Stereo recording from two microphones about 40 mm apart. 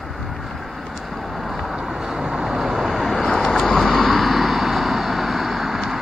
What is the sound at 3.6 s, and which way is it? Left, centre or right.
Vehicle, centre.